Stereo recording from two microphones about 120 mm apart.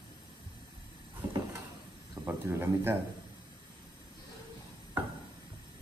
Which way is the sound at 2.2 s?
20° right (ahead or behind).